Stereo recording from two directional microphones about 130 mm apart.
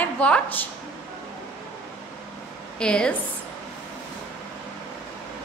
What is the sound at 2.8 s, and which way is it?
Speech, 5° left (ahead or behind).